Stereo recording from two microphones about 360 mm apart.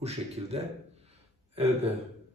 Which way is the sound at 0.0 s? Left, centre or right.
Centre.